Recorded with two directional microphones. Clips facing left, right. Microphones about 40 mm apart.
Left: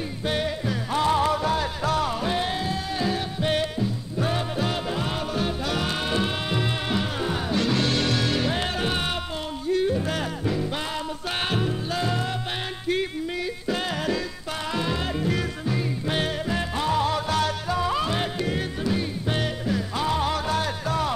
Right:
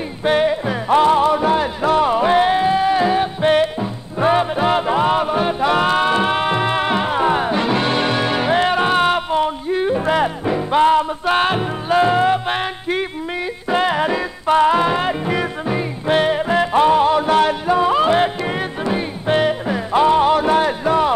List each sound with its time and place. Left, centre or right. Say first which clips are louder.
0.2 s music: right 11 dB; right
0.9 s music: right 9 dB; right
14.4 s music: right 15 dB; right
16.5 s music: right 12 dB; right